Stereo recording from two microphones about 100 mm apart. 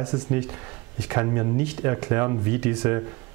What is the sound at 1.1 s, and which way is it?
Speech, 20° right (ahead or behind).